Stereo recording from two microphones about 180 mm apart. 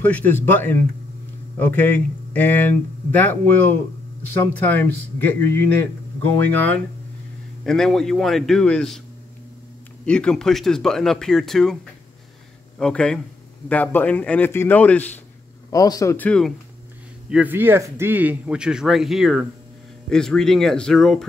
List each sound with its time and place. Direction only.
0.0 s speech: 10° left (ahead or behind)
6.2 s speech: 10° left (ahead or behind)
7.6 s speech: centre (ahead or behind)
10.0 s speech: 5° left (ahead or behind)
15.7 s speech: 20° left (ahead or behind)
17.3 s a man's voice: 10° right (ahead or behind)